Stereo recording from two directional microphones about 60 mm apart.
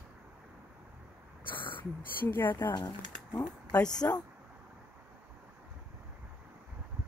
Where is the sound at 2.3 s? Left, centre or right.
Left.